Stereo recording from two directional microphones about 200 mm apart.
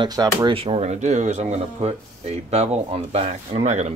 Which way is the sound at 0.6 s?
30° right (ahead or behind).